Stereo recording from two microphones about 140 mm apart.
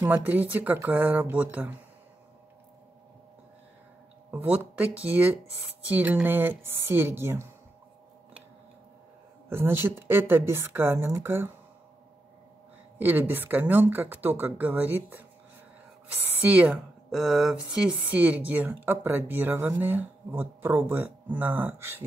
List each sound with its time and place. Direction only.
0.0 s speech: 10° right (ahead or behind)
4.3 s speech: 10° right (ahead or behind)
9.5 s speech: 15° right (ahead or behind)
13.0 s speech: 15° right (ahead or behind)
16.3 s speech: 10° right (ahead or behind)